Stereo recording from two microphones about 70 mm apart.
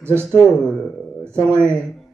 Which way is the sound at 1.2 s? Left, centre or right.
Right.